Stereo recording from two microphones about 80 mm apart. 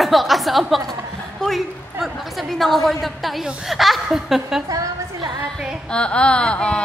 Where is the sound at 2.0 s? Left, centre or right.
Centre.